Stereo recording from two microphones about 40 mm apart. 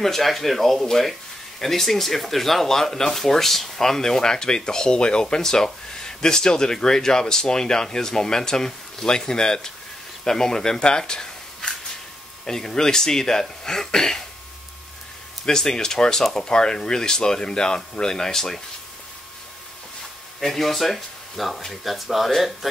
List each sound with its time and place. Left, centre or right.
0.0 s speech: centre
15.4 s speech: centre
20.3 s speech: centre